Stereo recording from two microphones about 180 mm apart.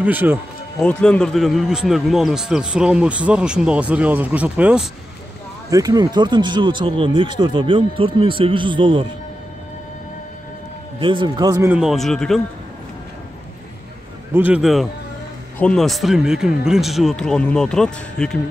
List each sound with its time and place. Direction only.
0.0 s speech: 10° right (ahead or behind)
0.7 s a man's voice: 5° left (ahead or behind)
5.7 s speech: 20° right (ahead or behind)
11.0 s speech: 25° right (ahead or behind)
11.7 s a man's voice: centre (ahead or behind)
14.3 s a man's voice: 10° right (ahead or behind)